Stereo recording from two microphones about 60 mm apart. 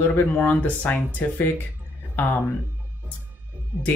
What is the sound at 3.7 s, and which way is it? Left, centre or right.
Speech, right.